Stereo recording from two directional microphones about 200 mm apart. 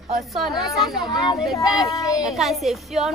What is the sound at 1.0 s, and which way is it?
A child's voice, 20° left (ahead or behind).